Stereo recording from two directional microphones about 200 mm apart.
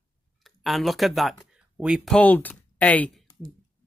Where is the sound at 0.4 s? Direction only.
Centre (ahead or behind).